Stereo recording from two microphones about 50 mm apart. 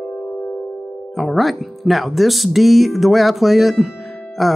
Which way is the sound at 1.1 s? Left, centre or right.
Centre.